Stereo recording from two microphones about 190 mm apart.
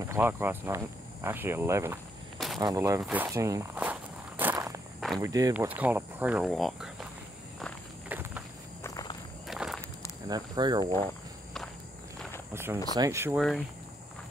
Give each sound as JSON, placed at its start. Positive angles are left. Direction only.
{"t": 0.0, "sound": "speech", "side_deg": -15}
{"t": 2.3, "sound": "a sound", "side_deg": 0}
{"t": 2.6, "sound": "speech", "side_deg": -20}
{"t": 3.0, "sound": "walk", "side_deg": -10}
{"t": 5.2, "sound": "speech", "side_deg": -15}
{"t": 8.1, "sound": "walk", "side_deg": -10}
{"t": 8.8, "sound": "walk", "side_deg": 20}
{"t": 9.5, "sound": "walk", "side_deg": 0}
{"t": 10.2, "sound": "speech", "side_deg": -20}
{"t": 12.5, "sound": "speech", "side_deg": -15}